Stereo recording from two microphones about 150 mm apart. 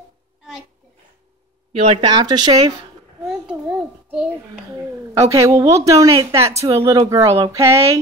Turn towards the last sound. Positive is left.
turn(degrees=-20)  # may be behind; listen again after turning